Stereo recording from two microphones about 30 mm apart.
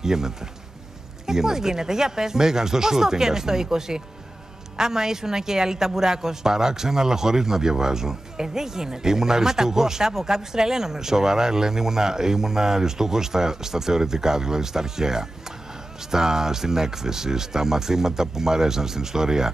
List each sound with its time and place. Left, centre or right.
0.0 s a woman's voice: centre